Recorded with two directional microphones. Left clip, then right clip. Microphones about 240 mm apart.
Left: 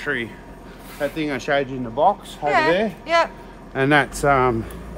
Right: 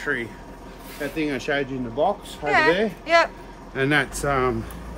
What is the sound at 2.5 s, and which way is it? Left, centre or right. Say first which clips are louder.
Speech: left 1 dB; centre.